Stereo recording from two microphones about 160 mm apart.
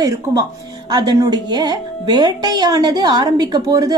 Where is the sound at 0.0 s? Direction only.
25° right (ahead or behind).